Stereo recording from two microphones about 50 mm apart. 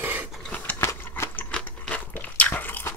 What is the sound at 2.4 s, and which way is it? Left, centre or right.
Biting, left.